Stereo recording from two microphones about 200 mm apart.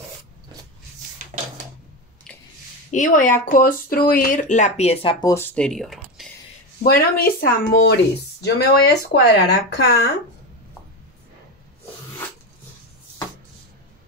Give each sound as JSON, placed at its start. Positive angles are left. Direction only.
{"t": 2.9, "sound": "speech", "side_deg": 40}
{"t": 5.2, "sound": "speech", "side_deg": 10}
{"t": 6.8, "sound": "speech", "side_deg": 45}